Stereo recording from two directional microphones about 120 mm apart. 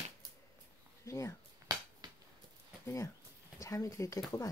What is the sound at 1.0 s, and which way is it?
Speech, 25° left (ahead or behind).